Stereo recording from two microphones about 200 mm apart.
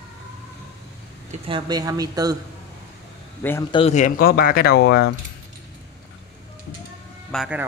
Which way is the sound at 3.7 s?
30° left (ahead or behind).